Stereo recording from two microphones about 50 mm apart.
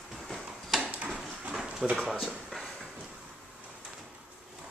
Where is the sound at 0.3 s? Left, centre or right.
Centre.